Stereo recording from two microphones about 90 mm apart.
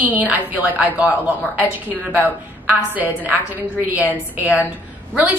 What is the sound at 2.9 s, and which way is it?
A woman's voice, 20° right (ahead or behind).